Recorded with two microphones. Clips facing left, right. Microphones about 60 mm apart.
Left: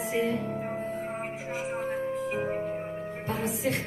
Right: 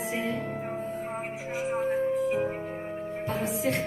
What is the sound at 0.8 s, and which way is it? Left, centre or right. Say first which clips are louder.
Music: even; left.